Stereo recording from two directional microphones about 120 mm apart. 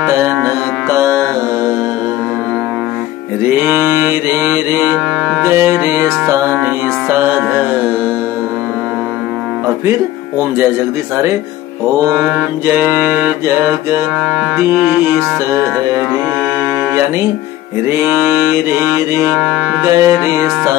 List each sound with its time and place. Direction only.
0.0 s mantra: 25° right (ahead or behind)
0.8 s music: 25° right (ahead or behind)
3.6 s music: 20° right (ahead or behind)
12.2 s mantra: 5° right (ahead or behind)
12.6 s music: 20° right (ahead or behind)
14.6 s mantra: 20° right (ahead or behind)
17.8 s mantra: 20° right (ahead or behind)
19.3 s music: 5° right (ahead or behind)
19.8 s mantra: 25° right (ahead or behind)